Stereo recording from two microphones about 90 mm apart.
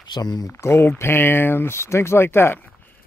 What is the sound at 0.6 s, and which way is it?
Speech, 30° left (ahead or behind).